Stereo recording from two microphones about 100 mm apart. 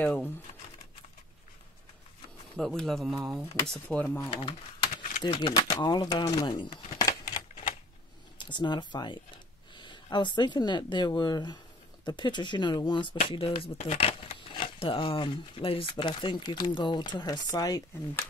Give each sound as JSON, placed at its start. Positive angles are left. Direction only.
{"t": 0.0, "sound": "speech", "side_deg": 15}
{"t": 2.5, "sound": "speech", "side_deg": 5}
{"t": 3.9, "sound": "speech", "side_deg": 15}
{"t": 4.3, "sound": "speech", "side_deg": 70}
{"t": 4.8, "sound": "a sound", "side_deg": 55}
{"t": 5.5, "sound": "speech", "side_deg": 45}
{"t": 7.0, "sound": "a sound", "side_deg": 40}
{"t": 8.4, "sound": "a sound", "side_deg": 50}
{"t": 10.1, "sound": "speech", "side_deg": 50}
{"t": 14.5, "sound": "speech", "side_deg": 60}